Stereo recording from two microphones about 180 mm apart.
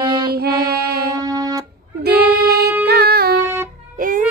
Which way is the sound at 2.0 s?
60° right (ahead or behind).